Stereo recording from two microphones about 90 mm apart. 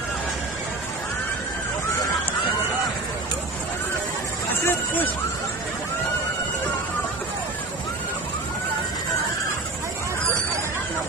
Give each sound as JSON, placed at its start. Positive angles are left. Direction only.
{"t": 4.6, "sound": "hubbub", "side_deg": 20}